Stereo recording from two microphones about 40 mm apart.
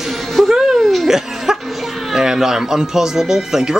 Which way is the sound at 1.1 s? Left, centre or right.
Centre.